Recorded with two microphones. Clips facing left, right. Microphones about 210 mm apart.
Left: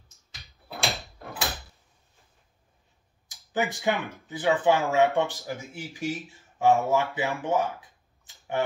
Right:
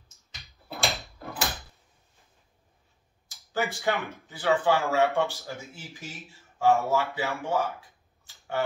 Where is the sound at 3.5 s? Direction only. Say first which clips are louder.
Left 1 dB; 15° left (ahead or behind).